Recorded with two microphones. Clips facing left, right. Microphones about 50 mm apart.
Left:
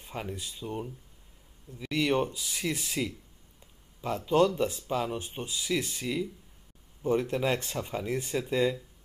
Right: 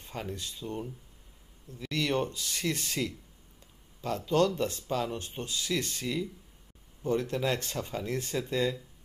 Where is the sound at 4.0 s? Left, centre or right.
Centre.